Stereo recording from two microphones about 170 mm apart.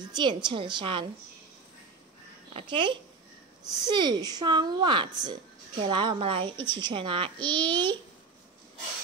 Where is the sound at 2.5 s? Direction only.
30° right (ahead or behind).